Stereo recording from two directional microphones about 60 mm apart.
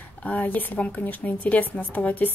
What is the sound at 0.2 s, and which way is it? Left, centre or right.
A woman's voice, left.